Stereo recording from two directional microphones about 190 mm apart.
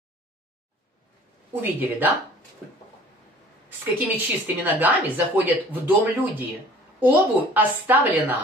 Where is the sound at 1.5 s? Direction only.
10° right (ahead or behind).